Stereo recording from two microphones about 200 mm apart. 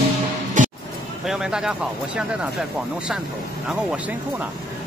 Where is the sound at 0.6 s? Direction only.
40° right (ahead or behind).